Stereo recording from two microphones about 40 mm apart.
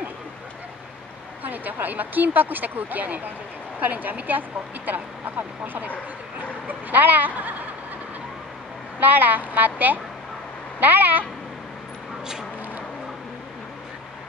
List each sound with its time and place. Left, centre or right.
1.4 s speech: right
9.0 s speech: right